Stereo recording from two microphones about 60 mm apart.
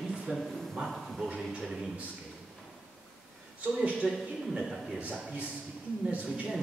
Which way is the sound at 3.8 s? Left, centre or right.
Right.